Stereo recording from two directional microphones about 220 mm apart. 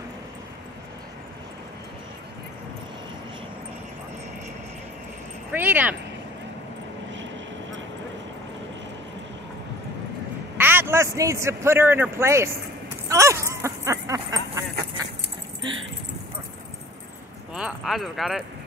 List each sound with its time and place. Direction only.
5.5 s cat: 10° right (ahead or behind)
10.6 s a man's voice: 10° right (ahead or behind)
13.1 s a sound: 15° right (ahead or behind)
15.0 s dog: 15° right (ahead or behind)
17.6 s speech: 5° right (ahead or behind)